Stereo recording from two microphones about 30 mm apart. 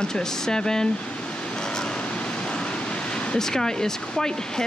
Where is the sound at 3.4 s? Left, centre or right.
Centre.